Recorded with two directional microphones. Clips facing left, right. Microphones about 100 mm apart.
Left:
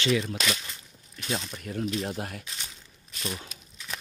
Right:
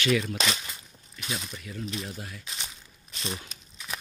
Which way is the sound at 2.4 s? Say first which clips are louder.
Right 1 dB; 20° right (ahead or behind).